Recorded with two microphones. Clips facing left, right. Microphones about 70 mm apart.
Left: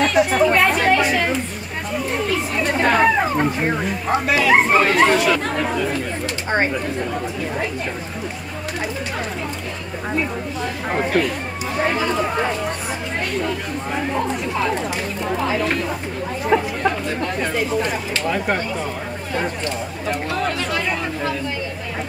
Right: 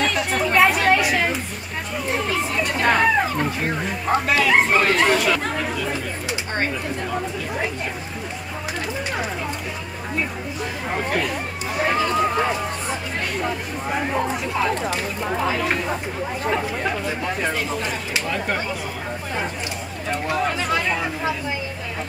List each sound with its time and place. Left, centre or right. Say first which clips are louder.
0.0 s speech: left 6 dB; centre
0.6 s chatter: even; centre
2.7 s a sound: left 2 dB; centre
4.3 s speech: left 3 dB; centre
6.5 s speech: left 6 dB; left
11.1 s speech: left 3 dB; centre
20.3 s speech: even; centre